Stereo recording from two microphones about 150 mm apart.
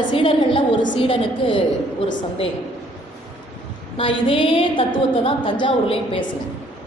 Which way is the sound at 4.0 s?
35° left (ahead or behind).